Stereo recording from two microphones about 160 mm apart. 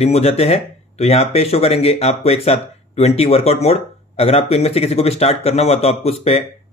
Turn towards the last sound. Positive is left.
turn(degrees=40)  # may be behind; listen again after turning